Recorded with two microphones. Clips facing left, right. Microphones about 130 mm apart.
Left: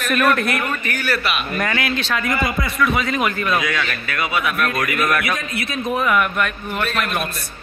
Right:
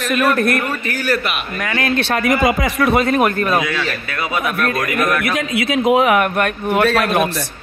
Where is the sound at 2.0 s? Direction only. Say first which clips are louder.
Right 5 dB; 65° right (ahead or behind); by 2.8 s 90° right.